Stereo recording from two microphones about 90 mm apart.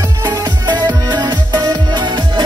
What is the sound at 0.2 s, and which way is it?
Music, 50° right (ahead or behind).